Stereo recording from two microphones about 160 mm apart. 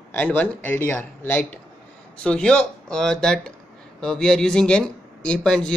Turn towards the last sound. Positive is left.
turn(degrees=5)  # may be behind; listen again after turning